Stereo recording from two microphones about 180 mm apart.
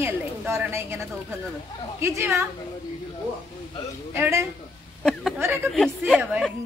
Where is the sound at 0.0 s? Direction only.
15° right (ahead or behind).